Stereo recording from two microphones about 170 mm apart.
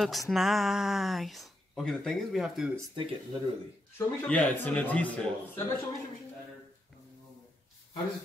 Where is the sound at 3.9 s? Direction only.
10° left (ahead or behind).